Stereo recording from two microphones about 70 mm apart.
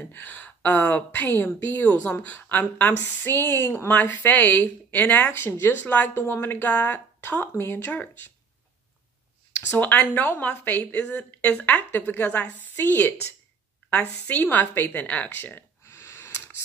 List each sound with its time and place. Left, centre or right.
0.1 s a woman's voice: left
9.7 s a woman's voice: left
15.8 s a sound: left